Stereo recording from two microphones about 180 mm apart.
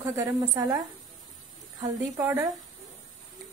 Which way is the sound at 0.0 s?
20° right (ahead or behind).